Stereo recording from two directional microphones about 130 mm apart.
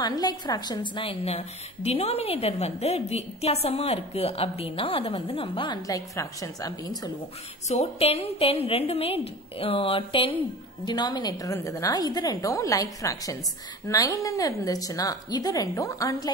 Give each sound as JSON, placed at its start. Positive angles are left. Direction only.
{"t": 0.0, "sound": "a woman's voice", "side_deg": 30}
{"t": 1.2, "sound": "a woman's voice", "side_deg": 55}
{"t": 5.8, "sound": "a woman's voice", "side_deg": 25}
{"t": 7.6, "sound": "a woman's voice", "side_deg": 55}
{"t": 10.9, "sound": "a woman's voice", "side_deg": 30}